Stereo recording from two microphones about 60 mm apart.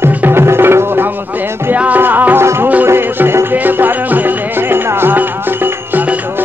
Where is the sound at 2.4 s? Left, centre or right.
Right.